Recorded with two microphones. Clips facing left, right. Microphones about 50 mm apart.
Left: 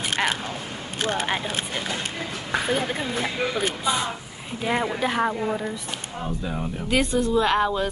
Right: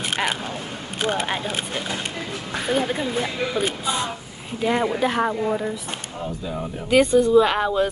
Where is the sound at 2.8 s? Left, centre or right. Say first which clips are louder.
Right 3 dB; centre.